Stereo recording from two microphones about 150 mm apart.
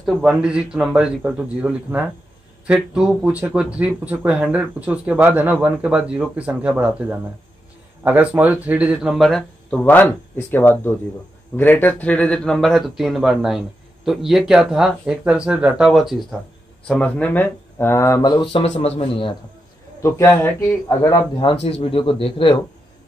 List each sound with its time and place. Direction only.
0.0 s speech: 5° right (ahead or behind); by 18.3 s 20° left (ahead or behind)
18.3 s speech: 35° left (ahead or behind)
20.0 s speech: 15° left (ahead or behind)
21.0 s speech: 25° left (ahead or behind)